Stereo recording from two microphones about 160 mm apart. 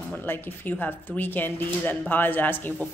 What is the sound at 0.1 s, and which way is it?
Speech, 10° left (ahead or behind).